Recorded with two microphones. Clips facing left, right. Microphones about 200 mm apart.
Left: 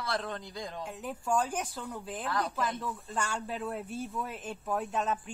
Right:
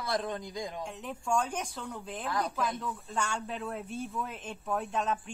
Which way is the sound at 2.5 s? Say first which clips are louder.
Even; centre (ahead or behind).